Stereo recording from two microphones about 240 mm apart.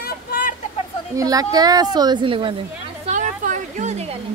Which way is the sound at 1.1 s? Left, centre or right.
Centre.